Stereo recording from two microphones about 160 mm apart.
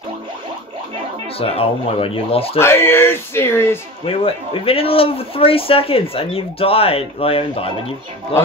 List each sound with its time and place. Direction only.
1.4 s a man's voice: 40° left (ahead or behind)
2.6 s speech: 15° left (ahead or behind)
4.0 s a man's voice: 35° left (ahead or behind)